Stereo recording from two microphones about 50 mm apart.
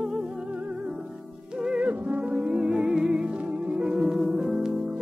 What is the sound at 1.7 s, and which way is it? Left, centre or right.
Music, right.